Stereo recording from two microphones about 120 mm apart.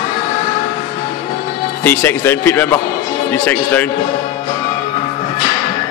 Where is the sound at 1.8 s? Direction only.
15° left (ahead or behind).